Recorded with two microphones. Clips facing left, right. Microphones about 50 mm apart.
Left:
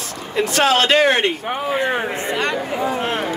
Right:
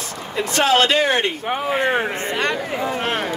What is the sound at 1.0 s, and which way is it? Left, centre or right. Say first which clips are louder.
Speech: left 3 dB; centre.